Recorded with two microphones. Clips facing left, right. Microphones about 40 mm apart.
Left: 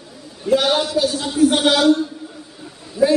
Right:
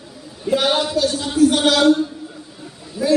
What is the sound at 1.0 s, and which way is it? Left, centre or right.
Speech, centre.